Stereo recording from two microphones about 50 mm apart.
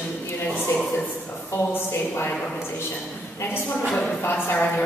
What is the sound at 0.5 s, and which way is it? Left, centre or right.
A woman's voice, left.